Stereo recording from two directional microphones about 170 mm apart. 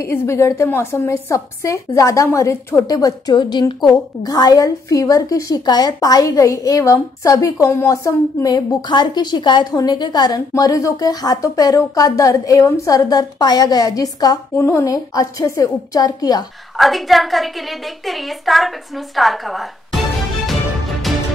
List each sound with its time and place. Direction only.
0.0 s a woman's voice: 15° left (ahead or behind)
16.7 s a woman's voice: centre (ahead or behind)
21.1 s music: centre (ahead or behind)